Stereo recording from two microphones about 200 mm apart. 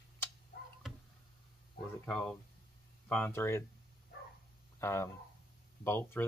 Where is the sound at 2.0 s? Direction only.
5° left (ahead or behind).